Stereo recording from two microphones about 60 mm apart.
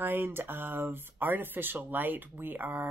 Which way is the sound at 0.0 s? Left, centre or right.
Right.